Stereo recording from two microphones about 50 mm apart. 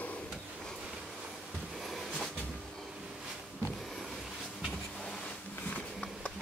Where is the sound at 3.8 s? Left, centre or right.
Centre.